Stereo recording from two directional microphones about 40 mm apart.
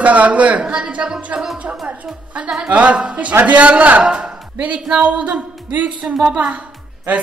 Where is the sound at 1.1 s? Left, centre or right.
Right.